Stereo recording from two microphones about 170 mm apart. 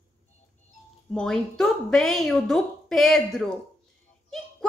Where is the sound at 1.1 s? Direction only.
5° left (ahead or behind).